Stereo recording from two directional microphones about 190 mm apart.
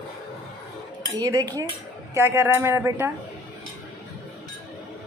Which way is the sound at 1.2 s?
20° right (ahead or behind).